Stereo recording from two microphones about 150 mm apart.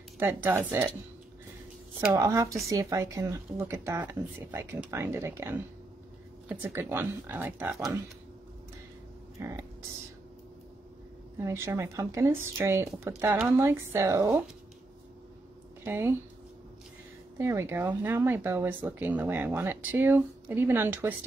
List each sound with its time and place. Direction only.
0.2 s speech: 15° right (ahead or behind)
2.0 s speech: 20° right (ahead or behind)
9.4 s speech: 20° right (ahead or behind)
11.3 s speech: 15° right (ahead or behind)
15.8 s speech: 15° right (ahead or behind)
17.4 s speech: 20° right (ahead or behind)